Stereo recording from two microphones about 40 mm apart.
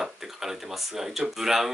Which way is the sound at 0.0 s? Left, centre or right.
Centre.